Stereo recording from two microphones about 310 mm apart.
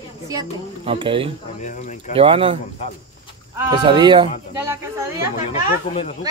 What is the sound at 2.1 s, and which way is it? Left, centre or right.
Speech, centre.